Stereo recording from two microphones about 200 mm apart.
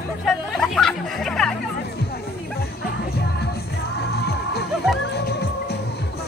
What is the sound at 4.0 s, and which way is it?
Music, 55° left (ahead or behind).